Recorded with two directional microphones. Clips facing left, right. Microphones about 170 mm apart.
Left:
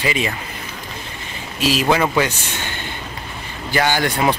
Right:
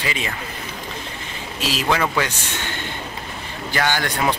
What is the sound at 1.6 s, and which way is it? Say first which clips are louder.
Speech: left 4 dB; 15° left (ahead or behind).